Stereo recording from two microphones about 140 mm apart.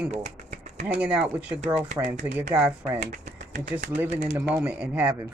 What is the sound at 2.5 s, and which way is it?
Speech, 10° right (ahead or behind).